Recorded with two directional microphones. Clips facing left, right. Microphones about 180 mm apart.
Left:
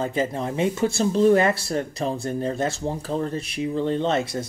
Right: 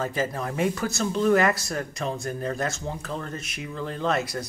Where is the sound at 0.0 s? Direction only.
25° left (ahead or behind).